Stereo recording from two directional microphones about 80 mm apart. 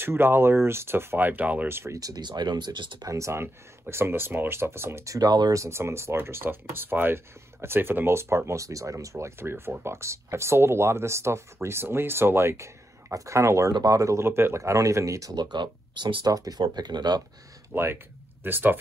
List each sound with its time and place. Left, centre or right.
0.0 s speech: right
1.7 s speech: right
2.0 s speech: right
2.2 s speech: right
3.1 s speech: right
3.9 s speech: right
5.5 s speech: right
15.3 s speech: right
16.3 s speech: right
16.6 s speech: right
17.7 s speech: centre
18.4 s speech: right